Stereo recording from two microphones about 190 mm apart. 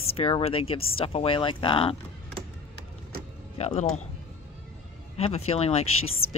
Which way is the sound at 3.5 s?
30° left (ahead or behind).